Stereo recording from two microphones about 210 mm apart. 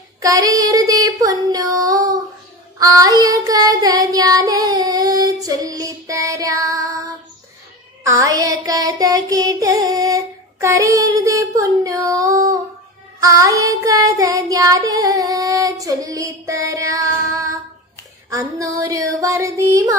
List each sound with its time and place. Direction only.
0.2 s female singing: 15° right (ahead or behind)
2.8 s child singing: 15° right (ahead or behind)
8.0 s music: 15° right (ahead or behind)
13.2 s child singing: 15° right (ahead or behind)
18.3 s child singing: 15° right (ahead or behind)